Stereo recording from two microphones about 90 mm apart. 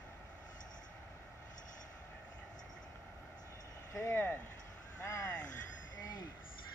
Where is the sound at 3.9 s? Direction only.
25° left (ahead or behind).